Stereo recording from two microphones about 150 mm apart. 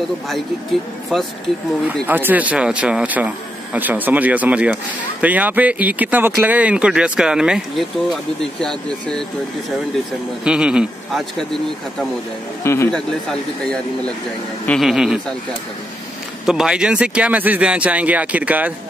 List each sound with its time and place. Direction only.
1.1 s speech: 5° left (ahead or behind)
2.0 s speech: 15° right (ahead or behind); by 9.2 s 5° left (ahead or behind)
10.4 s speech: 5° right (ahead or behind)
12.6 s speech: 15° left (ahead or behind)
12.9 s speech: 5° left (ahead or behind)
16.4 s speech: 5° right (ahead or behind)